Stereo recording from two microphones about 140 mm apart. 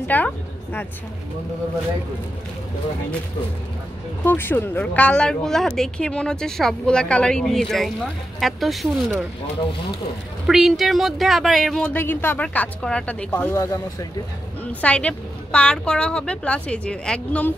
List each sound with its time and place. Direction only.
0.1 s speech: 10° left (ahead or behind)
4.2 s speech: 15° left (ahead or behind)
10.4 s speech: centre (ahead or behind)
13.6 s speech: 25° left (ahead or behind)
14.6 s speech: 10° left (ahead or behind)